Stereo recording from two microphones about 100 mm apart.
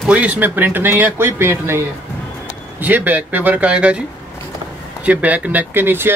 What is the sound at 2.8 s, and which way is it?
Speech, 20° right (ahead or behind).